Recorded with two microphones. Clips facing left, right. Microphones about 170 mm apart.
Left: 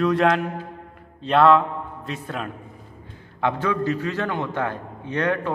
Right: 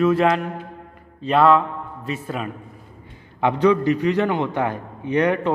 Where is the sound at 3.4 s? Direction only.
20° right (ahead or behind).